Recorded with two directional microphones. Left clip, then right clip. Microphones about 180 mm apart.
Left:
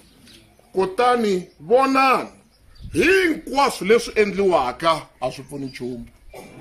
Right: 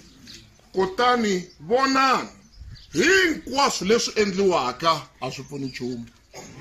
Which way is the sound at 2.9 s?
30° left (ahead or behind).